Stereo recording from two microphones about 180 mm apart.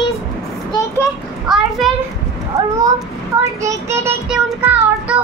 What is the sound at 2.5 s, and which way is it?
Speech, 20° right (ahead or behind).